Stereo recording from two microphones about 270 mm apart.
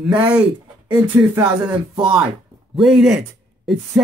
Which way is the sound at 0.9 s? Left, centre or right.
Centre.